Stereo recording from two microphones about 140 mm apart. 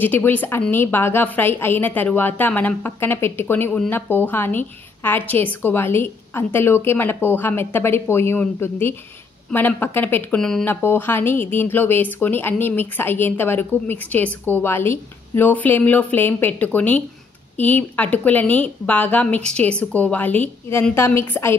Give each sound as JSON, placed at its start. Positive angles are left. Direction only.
{"t": 0.0, "sound": "a woman's voice", "side_deg": 15}